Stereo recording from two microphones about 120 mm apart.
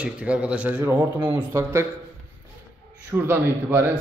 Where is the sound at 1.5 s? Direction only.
20° right (ahead or behind).